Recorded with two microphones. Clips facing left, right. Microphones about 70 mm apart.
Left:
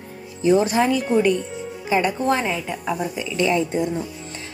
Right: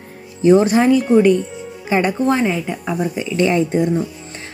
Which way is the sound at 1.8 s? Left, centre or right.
Right.